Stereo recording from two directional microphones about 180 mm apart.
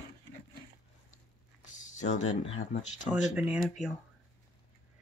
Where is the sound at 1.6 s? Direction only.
45° left (ahead or behind).